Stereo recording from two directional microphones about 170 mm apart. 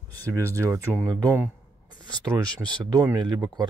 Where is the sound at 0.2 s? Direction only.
10° left (ahead or behind).